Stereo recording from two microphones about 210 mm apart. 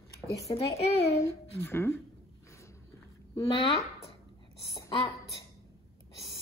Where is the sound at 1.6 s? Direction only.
10° left (ahead or behind).